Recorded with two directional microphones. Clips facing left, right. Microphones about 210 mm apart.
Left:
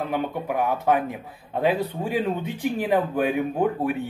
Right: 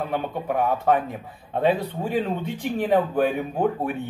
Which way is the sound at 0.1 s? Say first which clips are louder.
Even; 10° left (ahead or behind).